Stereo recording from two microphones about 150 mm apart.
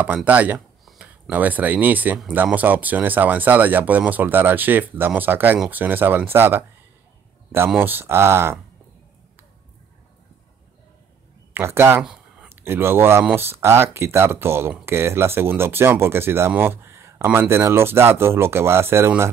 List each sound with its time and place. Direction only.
0.0 s speech: 10° right (ahead or behind)
11.5 s speech: 15° right (ahead or behind)
12.0 s speech: 5° right (ahead or behind)